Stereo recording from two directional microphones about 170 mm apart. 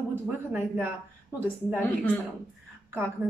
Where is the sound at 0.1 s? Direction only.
10° right (ahead or behind).